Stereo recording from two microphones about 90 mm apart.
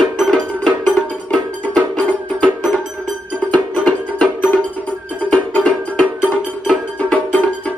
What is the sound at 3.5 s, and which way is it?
Music, 15° left (ahead or behind).